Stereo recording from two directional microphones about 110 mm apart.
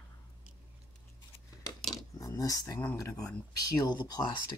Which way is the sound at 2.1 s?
35° left (ahead or behind).